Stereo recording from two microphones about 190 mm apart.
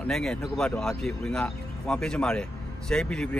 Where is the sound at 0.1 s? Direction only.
5° left (ahead or behind).